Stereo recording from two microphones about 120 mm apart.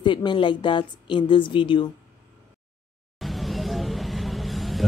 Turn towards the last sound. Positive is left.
turn(degrees=0)  # may be behind; listen again after turning